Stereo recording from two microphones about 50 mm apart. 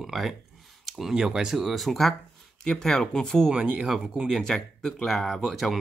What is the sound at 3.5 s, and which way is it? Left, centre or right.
Speech, right.